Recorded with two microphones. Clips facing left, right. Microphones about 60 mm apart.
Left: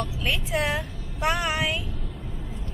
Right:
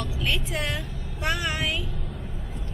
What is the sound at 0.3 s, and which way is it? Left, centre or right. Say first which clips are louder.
A woman's voice: left 4 dB; centre.